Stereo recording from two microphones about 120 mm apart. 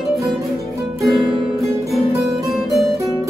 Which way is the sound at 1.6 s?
Centre (ahead or behind).